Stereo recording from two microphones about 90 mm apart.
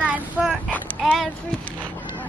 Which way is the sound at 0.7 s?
15° left (ahead or behind).